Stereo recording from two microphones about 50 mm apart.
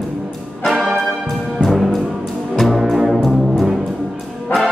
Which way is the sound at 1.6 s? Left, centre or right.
Centre.